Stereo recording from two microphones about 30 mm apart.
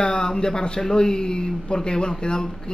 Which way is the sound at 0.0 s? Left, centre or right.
Left.